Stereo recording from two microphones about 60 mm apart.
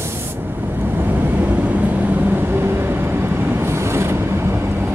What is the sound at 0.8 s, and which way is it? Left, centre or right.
Vehicle, right.